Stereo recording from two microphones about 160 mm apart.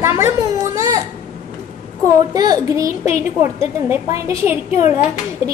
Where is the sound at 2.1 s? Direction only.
25° right (ahead or behind).